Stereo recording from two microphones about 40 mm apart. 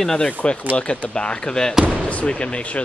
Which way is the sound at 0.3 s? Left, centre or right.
Left.